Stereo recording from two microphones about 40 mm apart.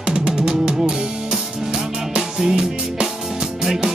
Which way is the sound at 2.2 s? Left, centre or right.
Centre.